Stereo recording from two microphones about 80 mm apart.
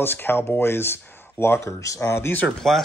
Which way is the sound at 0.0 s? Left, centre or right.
Left.